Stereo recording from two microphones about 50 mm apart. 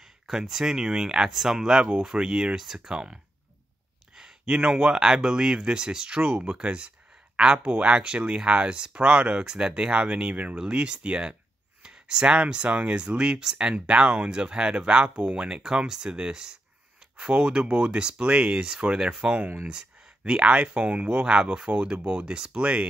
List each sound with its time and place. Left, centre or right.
0.0 s speech: centre
4.1 s a sound: centre
4.6 s speech: centre